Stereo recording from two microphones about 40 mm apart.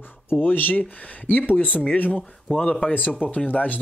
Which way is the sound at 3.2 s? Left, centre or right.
Left.